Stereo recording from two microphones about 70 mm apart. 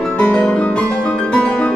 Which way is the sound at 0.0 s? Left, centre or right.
Centre.